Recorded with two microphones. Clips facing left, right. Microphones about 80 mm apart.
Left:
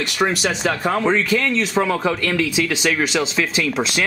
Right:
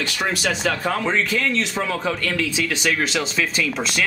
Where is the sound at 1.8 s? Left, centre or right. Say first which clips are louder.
Left 5 dB; centre.